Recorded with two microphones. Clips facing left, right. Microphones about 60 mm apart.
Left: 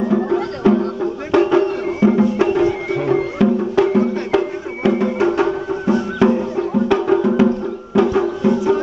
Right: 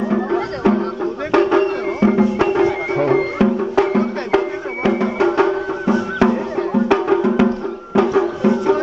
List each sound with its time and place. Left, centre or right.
0.1 s music: right
1.3 s a sound: right
2.1 s music: right